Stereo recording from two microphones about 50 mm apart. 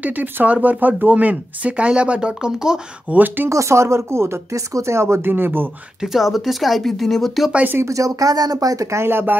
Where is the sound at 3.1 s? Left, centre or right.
Right.